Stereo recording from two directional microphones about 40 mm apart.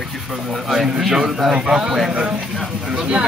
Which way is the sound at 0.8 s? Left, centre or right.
Centre.